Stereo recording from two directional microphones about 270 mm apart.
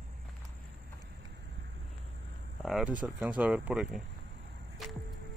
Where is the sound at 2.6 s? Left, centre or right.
Centre.